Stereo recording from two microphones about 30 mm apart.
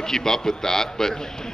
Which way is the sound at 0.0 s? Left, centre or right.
Centre.